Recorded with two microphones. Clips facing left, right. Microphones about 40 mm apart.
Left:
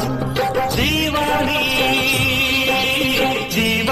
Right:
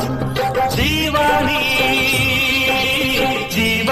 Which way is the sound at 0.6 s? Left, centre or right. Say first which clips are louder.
Right 1 dB; right.